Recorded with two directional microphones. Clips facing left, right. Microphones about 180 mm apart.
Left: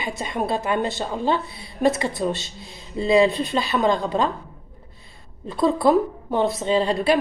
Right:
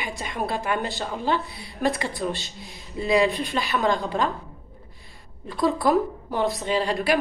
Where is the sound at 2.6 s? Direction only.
15° right (ahead or behind).